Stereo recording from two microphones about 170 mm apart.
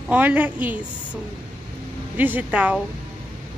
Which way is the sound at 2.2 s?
10° right (ahead or behind).